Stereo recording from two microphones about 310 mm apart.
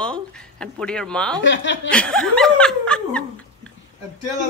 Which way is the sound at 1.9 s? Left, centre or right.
Centre.